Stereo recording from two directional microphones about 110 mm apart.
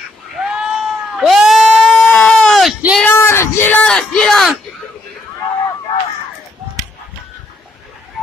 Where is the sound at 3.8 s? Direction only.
5° left (ahead or behind).